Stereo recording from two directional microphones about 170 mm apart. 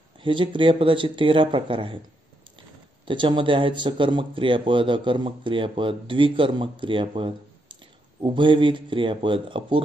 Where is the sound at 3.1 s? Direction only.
30° right (ahead or behind).